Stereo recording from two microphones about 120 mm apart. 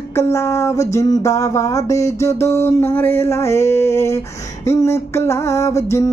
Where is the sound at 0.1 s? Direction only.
20° left (ahead or behind).